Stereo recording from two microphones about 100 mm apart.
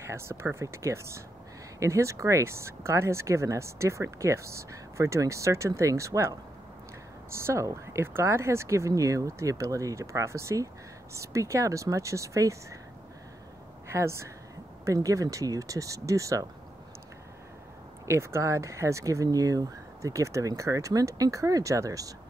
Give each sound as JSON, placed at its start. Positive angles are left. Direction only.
{"t": 0.0, "sound": "speech", "side_deg": -25}
{"t": 13.8, "sound": "speech", "side_deg": -25}
{"t": 18.0, "sound": "speech", "side_deg": -30}